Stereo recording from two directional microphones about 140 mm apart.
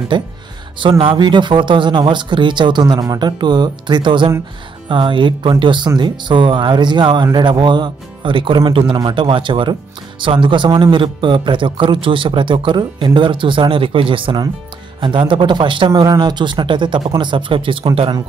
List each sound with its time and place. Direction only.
0.1 s a man's voice: 35° right (ahead or behind)